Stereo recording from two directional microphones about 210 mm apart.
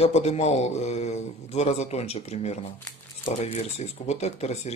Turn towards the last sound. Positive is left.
turn(degrees=30)  # may be behind; listen again after turning